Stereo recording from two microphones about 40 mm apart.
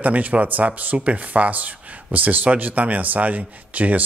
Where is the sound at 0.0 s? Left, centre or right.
Right.